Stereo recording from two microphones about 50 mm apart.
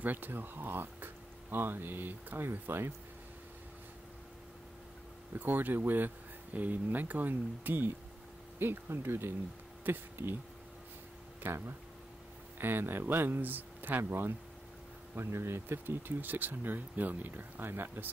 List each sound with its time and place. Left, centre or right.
0.0 s speech: right
5.3 s speech: right
8.5 s speech: right
11.4 s speech: right
15.1 s speech: right